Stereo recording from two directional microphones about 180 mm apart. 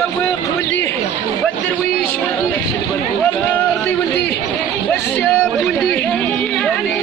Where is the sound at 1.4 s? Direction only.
10° left (ahead or behind).